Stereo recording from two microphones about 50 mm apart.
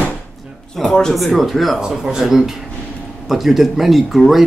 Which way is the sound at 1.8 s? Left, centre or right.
Centre.